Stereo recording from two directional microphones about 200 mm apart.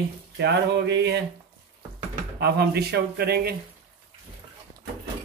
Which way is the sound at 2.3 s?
55° right (ahead or behind).